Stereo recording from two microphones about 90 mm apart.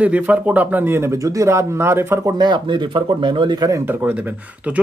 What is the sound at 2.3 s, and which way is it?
Speech, 55° right (ahead or behind).